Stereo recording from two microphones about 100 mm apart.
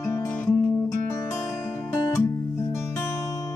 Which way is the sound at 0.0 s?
25° left (ahead or behind).